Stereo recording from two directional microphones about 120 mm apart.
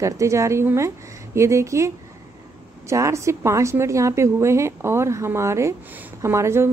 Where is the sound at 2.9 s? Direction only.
25° right (ahead or behind).